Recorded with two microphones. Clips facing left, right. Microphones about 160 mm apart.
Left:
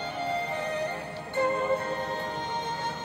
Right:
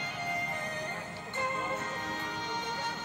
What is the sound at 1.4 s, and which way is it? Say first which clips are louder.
Music: left 9 dB; 60° left (ahead or behind).